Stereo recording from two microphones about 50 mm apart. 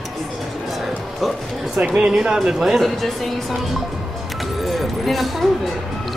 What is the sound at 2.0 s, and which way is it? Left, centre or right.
Speech, right.